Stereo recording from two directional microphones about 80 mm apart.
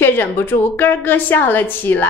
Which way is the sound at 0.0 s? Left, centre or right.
Left.